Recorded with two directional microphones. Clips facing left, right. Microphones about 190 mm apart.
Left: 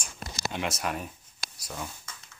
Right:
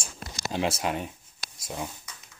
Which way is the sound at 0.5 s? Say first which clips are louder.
Right 5 dB; 30° right (ahead or behind).